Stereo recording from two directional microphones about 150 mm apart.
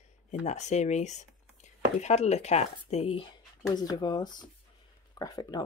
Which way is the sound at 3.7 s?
25° left (ahead or behind).